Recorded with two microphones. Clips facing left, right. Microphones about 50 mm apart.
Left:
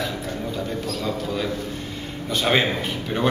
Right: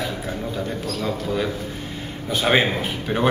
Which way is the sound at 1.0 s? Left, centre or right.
Centre.